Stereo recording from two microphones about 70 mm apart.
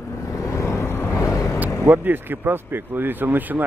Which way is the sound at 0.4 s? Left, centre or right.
Left.